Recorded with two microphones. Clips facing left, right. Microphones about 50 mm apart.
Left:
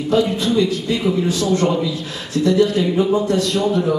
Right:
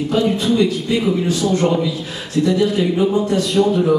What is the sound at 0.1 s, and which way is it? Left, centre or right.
Speech, centre.